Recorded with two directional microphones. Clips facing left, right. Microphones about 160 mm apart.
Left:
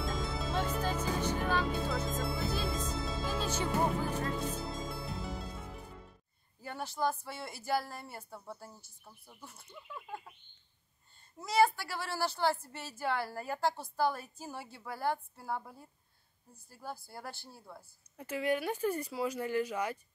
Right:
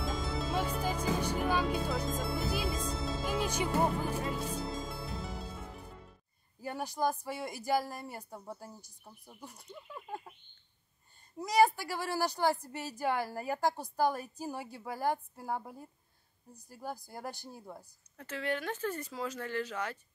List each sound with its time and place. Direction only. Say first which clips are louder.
0.0 s music: right 1 dB; centre (ahead or behind)
2.0 s music: right 1 dB; centre (ahead or behind)
3.3 s music: right 2 dB; 15° right (ahead or behind)
4.6 s music: right 1 dB; centre (ahead or behind)
6.6 s a woman's voice: right 2 dB; 15° right (ahead or behind)
11.3 s a woman's voice: right 2 dB; 15° right (ahead or behind)
18.1 s speech: left 3 dB; 10° left (ahead or behind)